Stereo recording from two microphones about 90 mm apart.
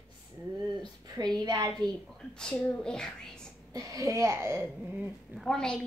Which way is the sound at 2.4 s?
15° left (ahead or behind).